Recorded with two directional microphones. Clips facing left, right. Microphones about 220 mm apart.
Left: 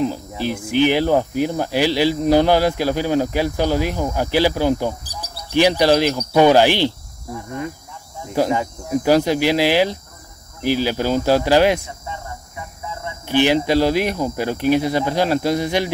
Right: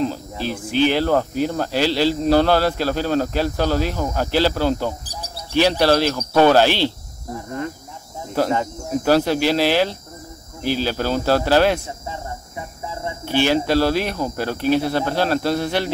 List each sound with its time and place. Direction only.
0.0 s speech: 15° left (ahead or behind)
8.4 s speech: 15° left (ahead or behind)
12.8 s a sound: 30° right (ahead or behind)
13.3 s speech: 15° left (ahead or behind)